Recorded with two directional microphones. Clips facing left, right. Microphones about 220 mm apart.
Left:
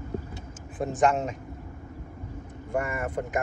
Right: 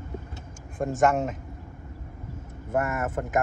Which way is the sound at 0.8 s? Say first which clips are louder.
Right 1 dB; centre (ahead or behind).